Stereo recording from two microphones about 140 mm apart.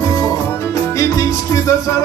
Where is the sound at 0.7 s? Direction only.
25° left (ahead or behind).